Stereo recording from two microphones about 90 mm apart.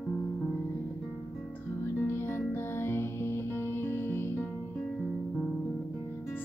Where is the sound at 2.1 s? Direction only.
25° left (ahead or behind).